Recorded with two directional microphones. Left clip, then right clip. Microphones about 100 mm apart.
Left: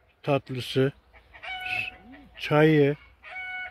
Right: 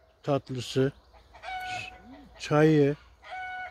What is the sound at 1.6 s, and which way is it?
Chicken, 15° left (ahead or behind).